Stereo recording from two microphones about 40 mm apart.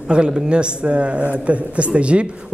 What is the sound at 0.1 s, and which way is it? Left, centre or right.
A man's voice, right.